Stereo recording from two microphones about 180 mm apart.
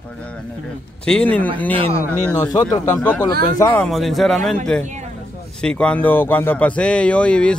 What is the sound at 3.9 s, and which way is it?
Speech, centre (ahead or behind).